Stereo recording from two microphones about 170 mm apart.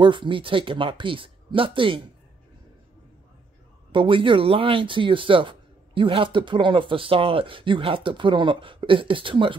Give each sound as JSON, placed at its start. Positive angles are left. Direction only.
{"t": 0.0, "sound": "speech", "side_deg": -30}
{"t": 3.9, "sound": "speech", "side_deg": -30}